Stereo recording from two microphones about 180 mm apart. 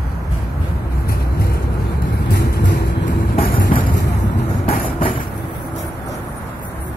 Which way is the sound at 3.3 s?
50° left (ahead or behind).